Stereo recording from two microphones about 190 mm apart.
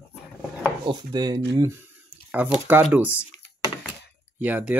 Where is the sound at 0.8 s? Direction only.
25° right (ahead or behind).